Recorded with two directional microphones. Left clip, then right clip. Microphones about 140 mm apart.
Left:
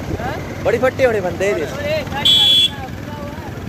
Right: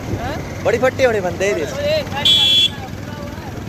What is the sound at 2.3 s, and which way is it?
Vehicle, 30° left (ahead or behind).